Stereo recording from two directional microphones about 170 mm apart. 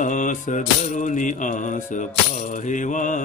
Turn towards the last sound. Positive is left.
turn(degrees=45)  # may be behind; listen again after turning